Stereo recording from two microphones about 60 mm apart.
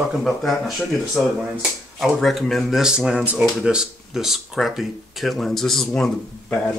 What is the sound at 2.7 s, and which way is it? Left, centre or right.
Speech, centre.